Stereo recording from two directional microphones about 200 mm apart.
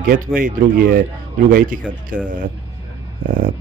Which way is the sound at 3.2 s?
45° right (ahead or behind).